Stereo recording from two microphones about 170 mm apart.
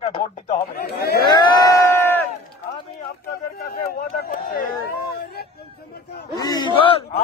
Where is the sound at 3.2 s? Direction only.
65° left (ahead or behind).